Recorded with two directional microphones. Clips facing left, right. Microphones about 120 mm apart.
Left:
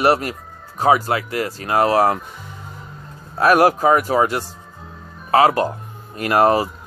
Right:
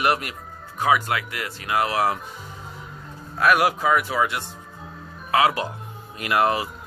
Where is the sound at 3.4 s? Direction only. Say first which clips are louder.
Left 6 dB; 40° left (ahead or behind).